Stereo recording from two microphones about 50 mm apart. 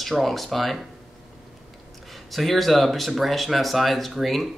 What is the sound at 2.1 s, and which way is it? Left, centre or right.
Speech, centre.